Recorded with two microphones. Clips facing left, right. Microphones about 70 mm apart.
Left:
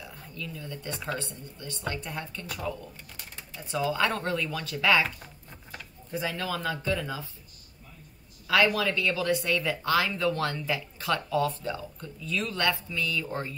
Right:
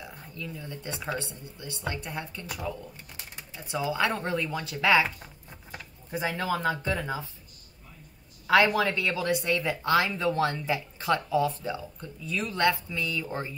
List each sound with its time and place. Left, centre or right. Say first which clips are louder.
0.0 s speech: right 1 dB; right
8.5 s speech: right 2 dB; right